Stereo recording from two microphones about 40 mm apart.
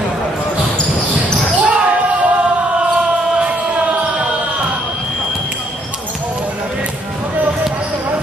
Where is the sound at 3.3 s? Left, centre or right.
Right.